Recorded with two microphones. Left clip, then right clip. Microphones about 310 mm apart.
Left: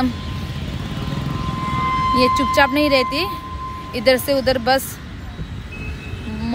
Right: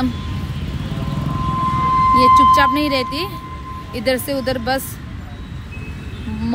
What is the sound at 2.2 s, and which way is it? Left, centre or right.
Speech, centre.